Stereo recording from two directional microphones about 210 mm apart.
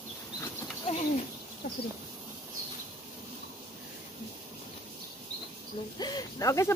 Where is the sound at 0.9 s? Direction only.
25° left (ahead or behind).